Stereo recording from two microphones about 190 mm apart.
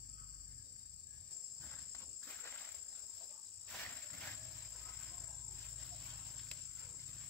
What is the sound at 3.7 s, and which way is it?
Insect, 5° left (ahead or behind).